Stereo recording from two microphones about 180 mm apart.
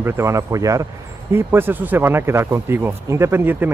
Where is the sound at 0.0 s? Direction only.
15° right (ahead or behind).